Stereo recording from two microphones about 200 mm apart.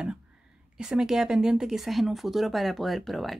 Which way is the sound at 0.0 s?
5° right (ahead or behind).